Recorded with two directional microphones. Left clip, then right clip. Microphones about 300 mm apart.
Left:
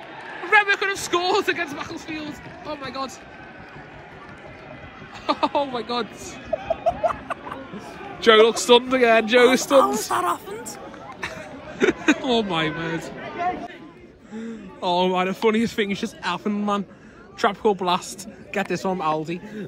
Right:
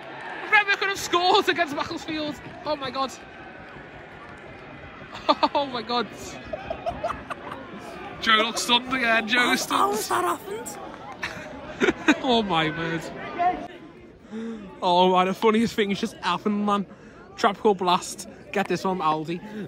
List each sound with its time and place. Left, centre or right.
0.5 s speech: centre
5.2 s speech: centre
6.8 s music: left
8.2 s speech: centre
11.1 s a sound: centre
14.3 s a man's voice: centre